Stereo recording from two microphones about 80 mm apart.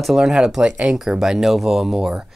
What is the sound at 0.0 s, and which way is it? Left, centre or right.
Speech, centre.